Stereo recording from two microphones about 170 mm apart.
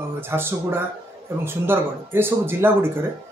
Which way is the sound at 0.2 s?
15° right (ahead or behind).